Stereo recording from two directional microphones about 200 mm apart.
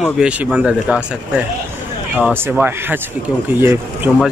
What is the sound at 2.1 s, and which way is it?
A man's voice, 5° right (ahead or behind).